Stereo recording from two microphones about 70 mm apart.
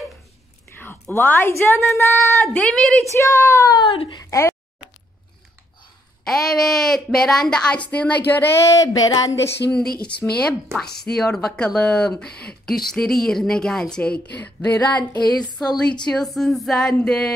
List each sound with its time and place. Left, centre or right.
1.1 s a woman's voice: left
2.5 s a woman's voice: centre
3.1 s a woman's voice: left
3.7 s a child's voice: left
4.3 s a sound: left
6.2 s a woman's voice: centre; by 8.5 s left
8.6 s a sound: left
9.7 s a woman's voice: centre
14.3 s a woman's voice: left